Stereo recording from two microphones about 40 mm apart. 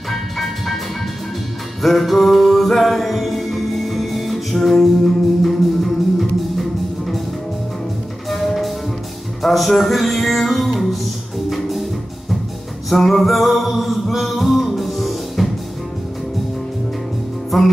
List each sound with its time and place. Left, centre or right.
0.1 s music: centre
1.8 s music: centre
8.3 s music: centre
17.5 s music: centre